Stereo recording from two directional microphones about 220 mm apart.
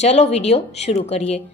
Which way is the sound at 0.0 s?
30° left (ahead or behind).